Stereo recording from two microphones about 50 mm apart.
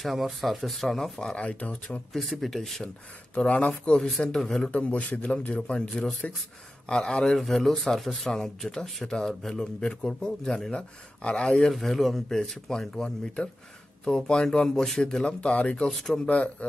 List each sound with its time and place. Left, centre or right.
0.0 s speech: centre
1.3 s speech: left
2.1 s speech: centre
3.3 s speech: left; by 4.6 s centre
4.6 s speech: left
5.6 s speech: centre
7.3 s speech: centre
11.7 s speech: centre; by 15.9 s left
15.9 s speech: centre
16.2 s speech: left